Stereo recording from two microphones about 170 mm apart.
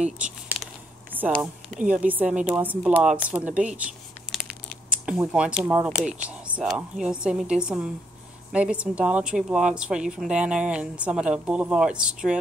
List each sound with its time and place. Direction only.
1.8 s speech: 10° right (ahead or behind)